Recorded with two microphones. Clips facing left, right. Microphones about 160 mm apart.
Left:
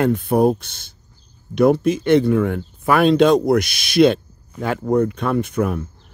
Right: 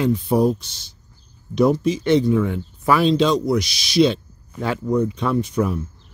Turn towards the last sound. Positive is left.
turn(degrees=60)  # may be behind; listen again after turning